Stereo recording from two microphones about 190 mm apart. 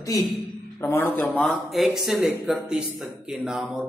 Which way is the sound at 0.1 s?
15° left (ahead or behind).